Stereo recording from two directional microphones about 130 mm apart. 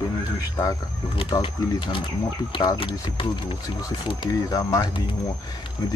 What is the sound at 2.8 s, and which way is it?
Speech, 40° left (ahead or behind).